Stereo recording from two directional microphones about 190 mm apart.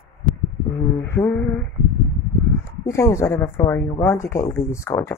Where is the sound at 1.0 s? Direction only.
15° left (ahead or behind).